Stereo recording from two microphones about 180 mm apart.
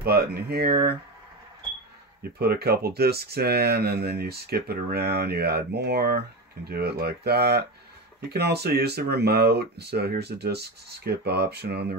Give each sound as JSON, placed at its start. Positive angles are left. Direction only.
{"t": 0.0, "sound": "speech", "side_deg": -60}
{"t": 2.3, "sound": "speech", "side_deg": -60}